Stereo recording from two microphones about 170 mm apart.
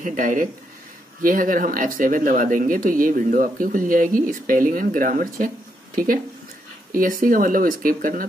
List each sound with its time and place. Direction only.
0.0 s speech: 50° right (ahead or behind)
6.9 s speech: 55° right (ahead or behind)